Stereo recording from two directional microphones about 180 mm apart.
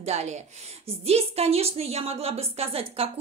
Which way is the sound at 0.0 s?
40° right (ahead or behind).